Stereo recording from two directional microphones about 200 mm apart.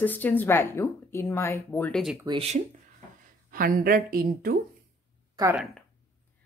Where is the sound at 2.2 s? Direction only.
30° right (ahead or behind).